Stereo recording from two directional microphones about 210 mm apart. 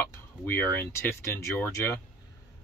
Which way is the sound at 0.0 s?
10° left (ahead or behind).